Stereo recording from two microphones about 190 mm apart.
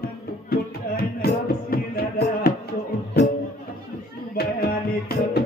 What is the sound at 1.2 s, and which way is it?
Music, 55° left (ahead or behind).